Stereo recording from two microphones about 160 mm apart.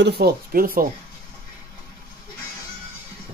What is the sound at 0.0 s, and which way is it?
Speech, 90° right.